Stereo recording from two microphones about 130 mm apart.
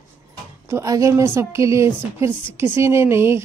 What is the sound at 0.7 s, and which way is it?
Speech, 25° right (ahead or behind).